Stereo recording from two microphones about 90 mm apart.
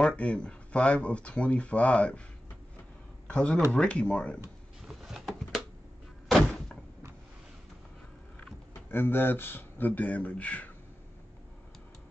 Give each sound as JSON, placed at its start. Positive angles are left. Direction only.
{"t": 0.0, "sound": "speech", "side_deg": 15}
{"t": 3.3, "sound": "speech", "side_deg": 10}
{"t": 4.8, "sound": "a sound", "side_deg": -5}
{"t": 8.9, "sound": "speech", "side_deg": 25}